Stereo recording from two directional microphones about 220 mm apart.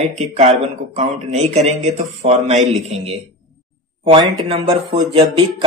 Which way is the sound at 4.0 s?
20° right (ahead or behind).